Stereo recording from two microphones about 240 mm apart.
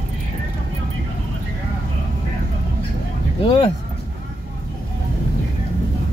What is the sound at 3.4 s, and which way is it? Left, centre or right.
Vehicle, left.